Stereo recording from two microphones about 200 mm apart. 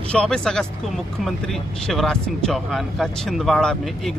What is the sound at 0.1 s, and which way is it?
Speech, 5° left (ahead or behind).